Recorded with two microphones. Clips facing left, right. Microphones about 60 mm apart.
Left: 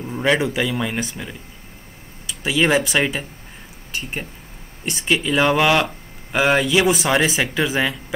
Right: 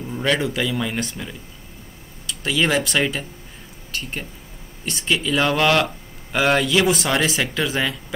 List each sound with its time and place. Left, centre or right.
0.0 s speech: centre